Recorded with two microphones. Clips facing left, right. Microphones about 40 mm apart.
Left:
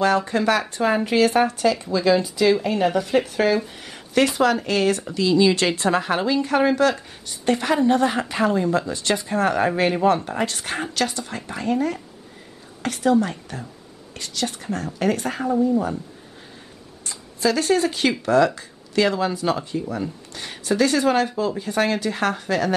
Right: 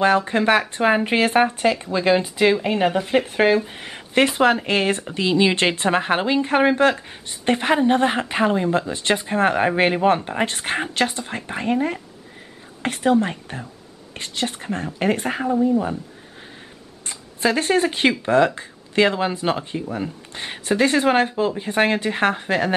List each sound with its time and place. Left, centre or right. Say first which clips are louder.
0.0 s speech: right 2 dB; right
17.0 s speech: right 1 dB; right